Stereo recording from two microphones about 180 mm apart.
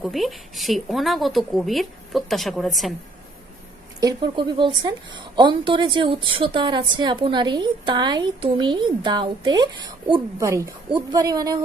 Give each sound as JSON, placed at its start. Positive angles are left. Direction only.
{"t": 0.0, "sound": "speech", "side_deg": 0}
{"t": 4.0, "sound": "a woman's voice", "side_deg": -25}